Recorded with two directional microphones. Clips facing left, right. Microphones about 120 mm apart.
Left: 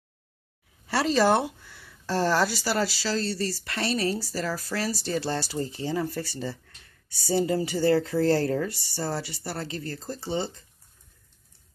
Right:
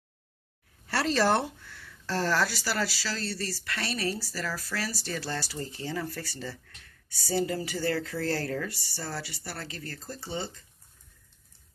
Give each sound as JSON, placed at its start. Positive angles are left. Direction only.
{"t": 0.8, "sound": "speech", "side_deg": 10}